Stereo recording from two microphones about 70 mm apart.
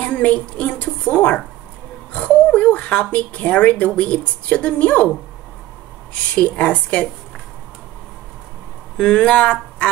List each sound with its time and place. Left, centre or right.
0.0 s a woman's voice: centre
6.3 s speech: centre
8.9 s speech: centre